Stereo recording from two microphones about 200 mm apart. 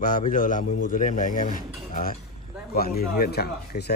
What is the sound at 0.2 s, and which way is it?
Speech, 40° left (ahead or behind).